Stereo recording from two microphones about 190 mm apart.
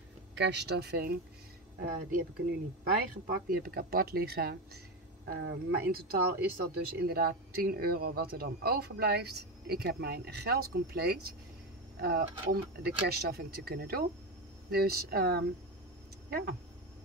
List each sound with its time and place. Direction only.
0.3 s speech: 65° right (ahead or behind)
1.8 s speech: 45° right (ahead or behind)
3.4 s speech: 50° right (ahead or behind)